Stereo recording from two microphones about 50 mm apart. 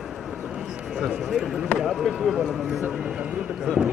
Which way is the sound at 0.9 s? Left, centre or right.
Centre.